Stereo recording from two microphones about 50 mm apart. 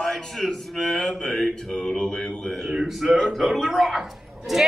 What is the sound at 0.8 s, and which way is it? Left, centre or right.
Mantra, centre.